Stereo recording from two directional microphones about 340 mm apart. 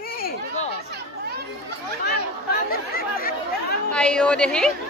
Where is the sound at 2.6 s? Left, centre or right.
Left.